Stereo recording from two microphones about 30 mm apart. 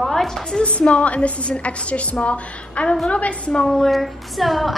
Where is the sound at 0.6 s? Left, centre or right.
Left.